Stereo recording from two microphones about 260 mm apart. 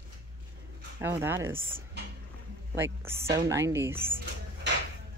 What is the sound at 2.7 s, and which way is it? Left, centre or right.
Speech, centre.